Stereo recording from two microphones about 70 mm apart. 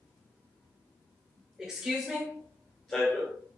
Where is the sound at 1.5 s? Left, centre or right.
Centre.